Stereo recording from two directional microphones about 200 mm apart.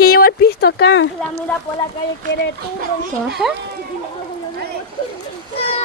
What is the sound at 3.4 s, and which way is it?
Speech, centre (ahead or behind).